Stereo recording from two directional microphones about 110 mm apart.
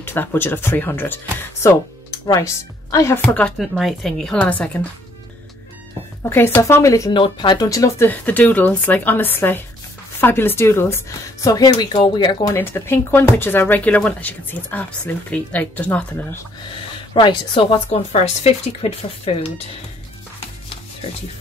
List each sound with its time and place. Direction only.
0.0 s speech: 20° left (ahead or behind)
3.5 s speech: centre (ahead or behind)
6.2 s speech: 20° left (ahead or behind)
7.1 s speech: 45° left (ahead or behind)
8.1 s speech: 15° left (ahead or behind); by 12.4 s 45° left (ahead or behind)
12.4 s speech: 20° left (ahead or behind)
17.1 s speech: 45° left (ahead or behind)
17.6 s speech: 60° left (ahead or behind)